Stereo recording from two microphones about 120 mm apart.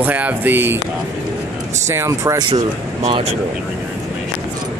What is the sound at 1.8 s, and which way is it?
Speech, 25° right (ahead or behind).